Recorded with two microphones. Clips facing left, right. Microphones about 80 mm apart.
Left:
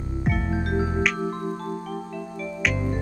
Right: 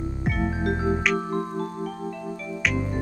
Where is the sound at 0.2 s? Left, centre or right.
Centre.